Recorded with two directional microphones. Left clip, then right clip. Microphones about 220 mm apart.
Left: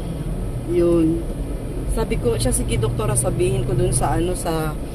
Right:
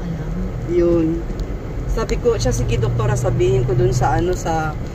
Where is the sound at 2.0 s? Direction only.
40° left (ahead or behind).